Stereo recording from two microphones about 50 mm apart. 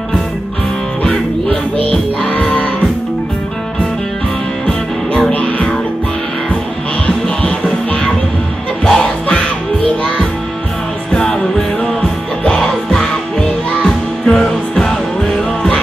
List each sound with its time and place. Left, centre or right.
1.9 s music: left
4.6 s music: centre
5.3 s music: left
7.1 s music: centre
11.8 s music: centre